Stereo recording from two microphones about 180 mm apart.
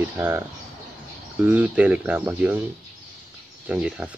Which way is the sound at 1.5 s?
10° right (ahead or behind).